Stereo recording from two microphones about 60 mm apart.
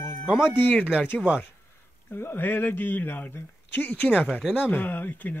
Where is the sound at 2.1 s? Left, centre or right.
Left.